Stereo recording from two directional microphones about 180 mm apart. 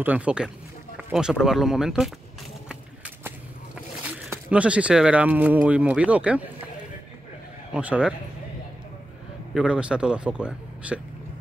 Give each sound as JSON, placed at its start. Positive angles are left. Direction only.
{"t": 0.0, "sound": "speech", "side_deg": -10}
{"t": 0.9, "sound": "a sound", "side_deg": -5}
{"t": 1.4, "sound": "speech", "side_deg": 0}
{"t": 2.7, "sound": "a sound", "side_deg": -10}
{"t": 4.3, "sound": "speech", "side_deg": -5}
{"t": 7.7, "sound": "speech", "side_deg": -5}
{"t": 9.5, "sound": "speech", "side_deg": -5}